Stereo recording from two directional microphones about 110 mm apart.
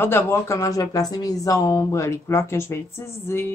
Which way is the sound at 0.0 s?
20° left (ahead or behind).